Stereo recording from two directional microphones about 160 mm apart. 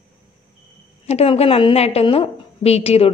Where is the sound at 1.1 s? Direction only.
40° left (ahead or behind).